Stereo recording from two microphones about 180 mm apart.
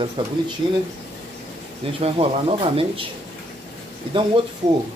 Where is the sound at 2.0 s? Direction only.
30° right (ahead or behind).